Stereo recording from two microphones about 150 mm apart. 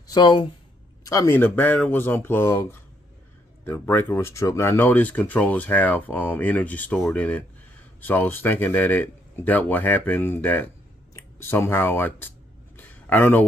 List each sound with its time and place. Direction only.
0.1 s speech: 30° left (ahead or behind)
1.0 s speech: 20° left (ahead or behind)
12.7 s a sound: 10° left (ahead or behind)